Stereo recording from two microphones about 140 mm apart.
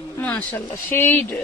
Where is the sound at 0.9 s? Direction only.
15° left (ahead or behind).